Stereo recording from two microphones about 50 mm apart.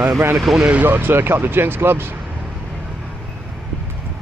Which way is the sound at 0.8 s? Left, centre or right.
Right.